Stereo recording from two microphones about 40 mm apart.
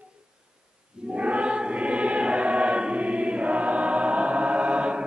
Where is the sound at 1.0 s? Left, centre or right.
Right.